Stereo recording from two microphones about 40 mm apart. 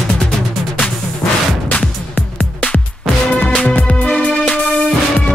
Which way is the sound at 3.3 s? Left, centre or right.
Left.